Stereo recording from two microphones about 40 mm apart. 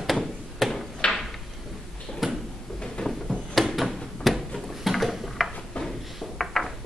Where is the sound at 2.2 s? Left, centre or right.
Centre.